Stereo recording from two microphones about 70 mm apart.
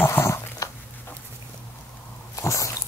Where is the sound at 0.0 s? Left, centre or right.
Left.